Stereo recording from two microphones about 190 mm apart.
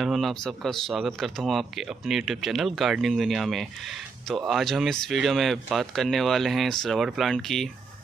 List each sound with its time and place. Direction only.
0.0 s speech: centre (ahead or behind)